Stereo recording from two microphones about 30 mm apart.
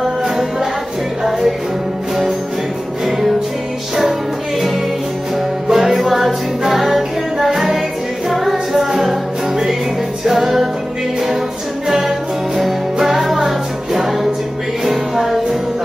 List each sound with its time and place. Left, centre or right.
0.0 s music: centre
3.1 s music: centre
5.7 s music: centre
10.2 s music: centre
11.9 s music: centre